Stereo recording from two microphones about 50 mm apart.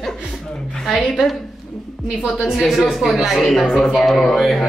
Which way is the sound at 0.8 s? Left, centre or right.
Centre.